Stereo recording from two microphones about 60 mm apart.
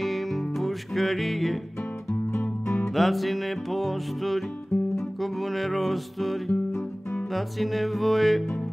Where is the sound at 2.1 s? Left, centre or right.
Left.